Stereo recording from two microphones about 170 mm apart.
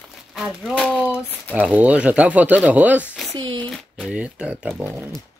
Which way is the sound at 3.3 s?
25° right (ahead or behind).